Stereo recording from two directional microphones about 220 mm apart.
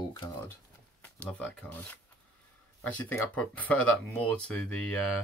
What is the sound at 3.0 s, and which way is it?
Speech, 5° left (ahead or behind).